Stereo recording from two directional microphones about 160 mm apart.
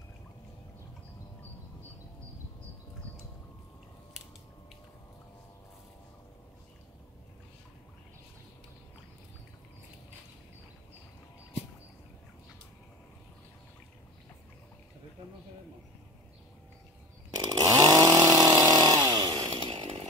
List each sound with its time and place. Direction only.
17.5 s chainsaw: 25° right (ahead or behind)
19.7 s chainsaw: 45° right (ahead or behind)